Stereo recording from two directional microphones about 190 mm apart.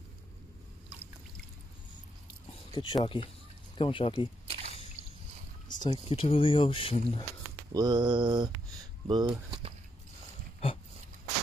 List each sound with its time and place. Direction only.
2.7 s speech: 20° left (ahead or behind)
4.5 s a sound: 35° right (ahead or behind)
5.8 s speech: 25° left (ahead or behind)
7.7 s mantra: 20° right (ahead or behind)
9.0 s speech: 25° right (ahead or behind)